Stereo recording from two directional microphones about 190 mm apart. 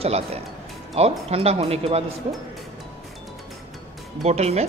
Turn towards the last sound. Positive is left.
turn(degrees=-35)  # may be behind; listen again after turning